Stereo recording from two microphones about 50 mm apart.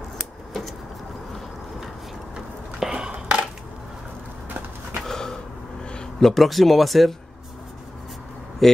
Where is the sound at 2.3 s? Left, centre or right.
Centre.